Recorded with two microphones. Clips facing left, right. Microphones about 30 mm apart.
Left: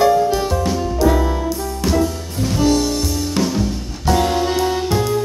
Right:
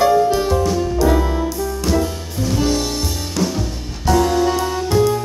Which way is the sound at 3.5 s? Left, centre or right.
Centre.